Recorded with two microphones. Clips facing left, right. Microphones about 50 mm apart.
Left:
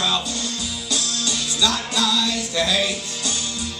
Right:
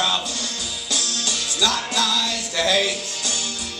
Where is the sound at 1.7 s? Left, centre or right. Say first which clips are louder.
Even; right.